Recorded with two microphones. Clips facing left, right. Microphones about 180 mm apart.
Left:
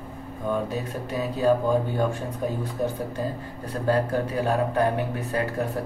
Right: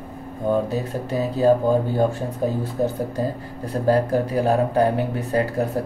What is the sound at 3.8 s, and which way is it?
Speech, 35° right (ahead or behind).